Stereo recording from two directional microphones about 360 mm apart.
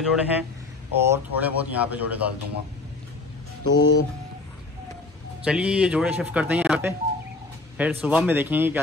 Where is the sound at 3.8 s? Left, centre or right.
Left.